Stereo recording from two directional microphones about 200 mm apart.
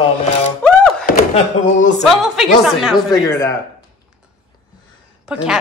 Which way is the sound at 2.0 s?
Centre (ahead or behind).